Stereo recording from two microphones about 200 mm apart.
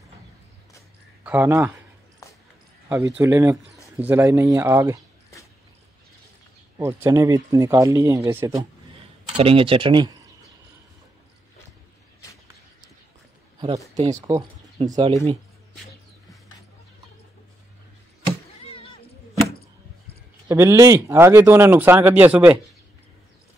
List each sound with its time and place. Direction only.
1.2 s speech: 10° right (ahead or behind)
3.2 s speech: 15° right (ahead or behind)
6.8 s speech: 15° right (ahead or behind)
9.4 s speech: 25° right (ahead or behind)
13.6 s speech: 20° right (ahead or behind)
20.4 s speech: 15° right (ahead or behind)